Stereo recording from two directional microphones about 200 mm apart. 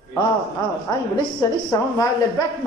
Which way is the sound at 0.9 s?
20° left (ahead or behind).